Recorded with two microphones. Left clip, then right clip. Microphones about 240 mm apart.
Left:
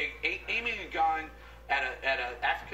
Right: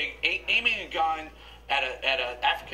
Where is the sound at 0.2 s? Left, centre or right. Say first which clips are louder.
Right 7 dB; centre.